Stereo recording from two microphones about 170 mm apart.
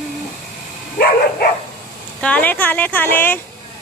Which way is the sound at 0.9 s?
65° left (ahead or behind).